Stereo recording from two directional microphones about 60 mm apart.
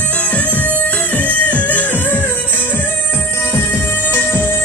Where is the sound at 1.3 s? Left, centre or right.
Left.